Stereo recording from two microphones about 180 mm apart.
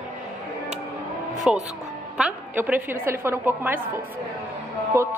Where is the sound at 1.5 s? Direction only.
5° right (ahead or behind).